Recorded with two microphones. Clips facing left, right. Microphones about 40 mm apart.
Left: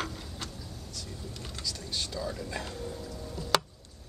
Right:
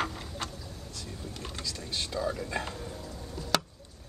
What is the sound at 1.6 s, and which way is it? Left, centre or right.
Speech, right.